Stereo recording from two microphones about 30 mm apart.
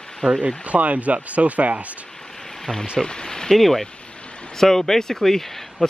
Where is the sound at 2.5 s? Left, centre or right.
Centre.